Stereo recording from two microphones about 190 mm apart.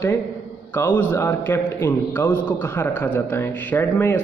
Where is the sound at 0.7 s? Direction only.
10° left (ahead or behind).